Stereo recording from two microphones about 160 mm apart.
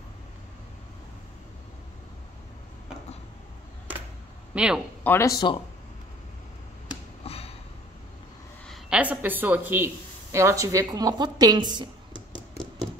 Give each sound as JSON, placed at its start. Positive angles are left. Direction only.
{"t": 4.6, "sound": "speech", "side_deg": -5}
{"t": 5.0, "sound": "speech", "side_deg": 15}
{"t": 7.2, "sound": "sniff", "side_deg": 40}
{"t": 8.9, "sound": "a woman's voice", "side_deg": -10}